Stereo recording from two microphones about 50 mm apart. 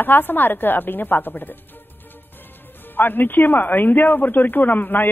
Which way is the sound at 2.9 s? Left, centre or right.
Left.